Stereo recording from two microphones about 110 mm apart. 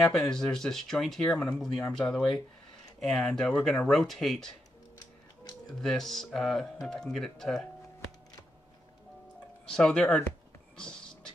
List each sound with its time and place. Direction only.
0.0 s speech: 5° left (ahead or behind)
4.9 s music: 40° left (ahead or behind)
5.8 s speech: 5° left (ahead or behind)
9.7 s speech: 5° left (ahead or behind)